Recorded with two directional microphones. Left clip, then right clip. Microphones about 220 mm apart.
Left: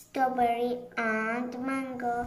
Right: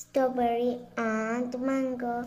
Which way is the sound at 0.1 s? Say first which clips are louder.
Even; 50° right (ahead or behind).